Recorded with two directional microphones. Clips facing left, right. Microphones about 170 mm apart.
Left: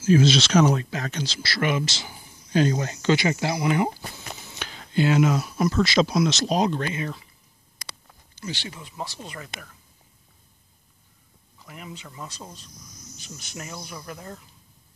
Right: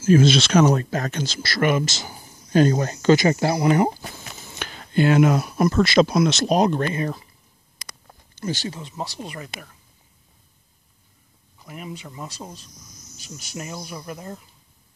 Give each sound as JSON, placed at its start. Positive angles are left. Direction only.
{"t": 0.0, "sound": "speech", "side_deg": -50}
{"t": 8.1, "sound": "a sound", "side_deg": -45}
{"t": 8.7, "sound": "speech", "side_deg": -25}
{"t": 9.2, "sound": "speech", "side_deg": -15}
{"t": 11.6, "sound": "speech", "side_deg": -15}